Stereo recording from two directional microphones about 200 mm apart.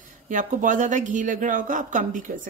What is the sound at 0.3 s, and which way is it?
Speech, 40° right (ahead or behind).